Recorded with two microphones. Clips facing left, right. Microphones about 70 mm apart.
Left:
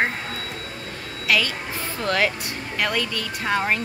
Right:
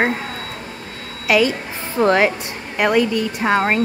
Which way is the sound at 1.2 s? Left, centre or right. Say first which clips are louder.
Right 7 dB; right.